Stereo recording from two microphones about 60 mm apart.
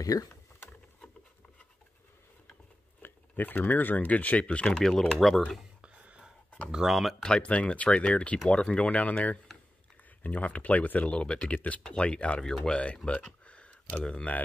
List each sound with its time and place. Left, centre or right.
0.0 s speech: left
3.0 s speech: left
4.8 s speech: centre
5.8 s a sound: centre
6.7 s speech: centre
7.2 s speech: centre